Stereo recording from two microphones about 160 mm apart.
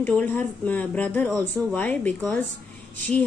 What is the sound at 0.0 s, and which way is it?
A woman's voice, 10° left (ahead or behind).